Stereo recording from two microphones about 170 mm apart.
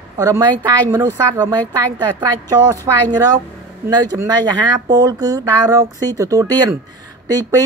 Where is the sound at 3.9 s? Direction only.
25° right (ahead or behind).